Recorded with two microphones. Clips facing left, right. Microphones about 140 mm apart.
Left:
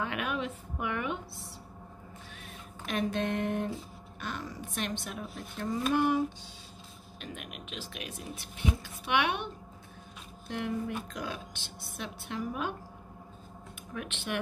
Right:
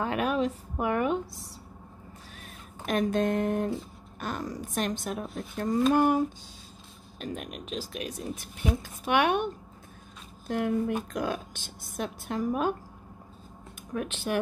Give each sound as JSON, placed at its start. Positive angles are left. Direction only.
{"t": 0.0, "sound": "speech", "side_deg": -40}
{"t": 2.8, "sound": "a woman's voice", "side_deg": -45}
{"t": 10.5, "sound": "a woman's voice", "side_deg": -45}
{"t": 13.9, "sound": "speech", "side_deg": -40}